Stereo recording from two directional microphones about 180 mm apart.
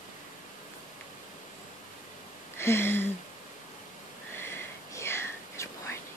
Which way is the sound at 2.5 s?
15° left (ahead or behind).